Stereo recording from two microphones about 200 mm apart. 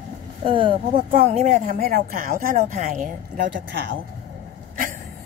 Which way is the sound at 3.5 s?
60° right (ahead or behind).